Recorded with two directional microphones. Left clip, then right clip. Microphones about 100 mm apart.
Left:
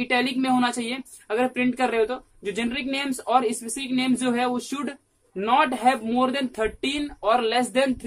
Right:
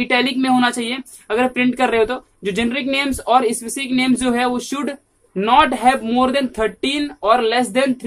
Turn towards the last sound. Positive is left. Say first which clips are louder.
# right 5 dB
turn(degrees=-10)  # may be behind; listen again after turning